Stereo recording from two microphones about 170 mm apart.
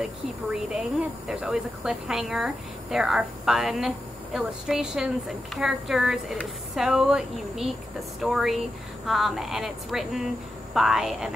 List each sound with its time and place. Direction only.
0.0 s speech: 5° right (ahead or behind)